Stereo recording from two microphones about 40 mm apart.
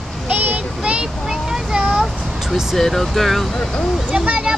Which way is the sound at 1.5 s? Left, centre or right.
Centre.